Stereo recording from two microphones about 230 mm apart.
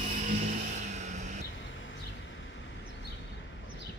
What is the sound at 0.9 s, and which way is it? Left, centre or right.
Music, right.